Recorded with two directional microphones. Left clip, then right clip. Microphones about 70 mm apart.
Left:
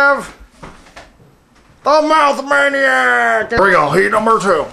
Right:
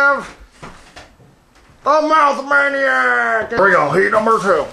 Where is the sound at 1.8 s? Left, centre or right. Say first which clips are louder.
Left 2 dB; centre.